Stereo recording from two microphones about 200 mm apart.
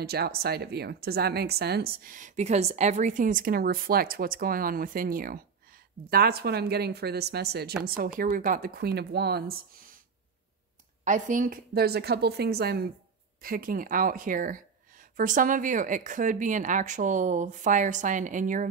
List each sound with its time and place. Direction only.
0.0 s speech: 55° right (ahead or behind)
11.1 s speech: 40° right (ahead or behind)